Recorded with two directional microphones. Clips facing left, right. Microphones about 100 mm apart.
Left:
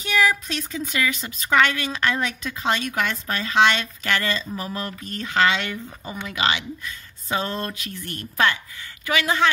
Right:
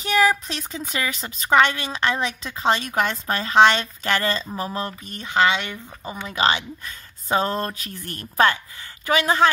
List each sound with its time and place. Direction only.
0.0 s a woman's voice: 35° right (ahead or behind)
6.2 s a woman's voice: 35° right (ahead or behind)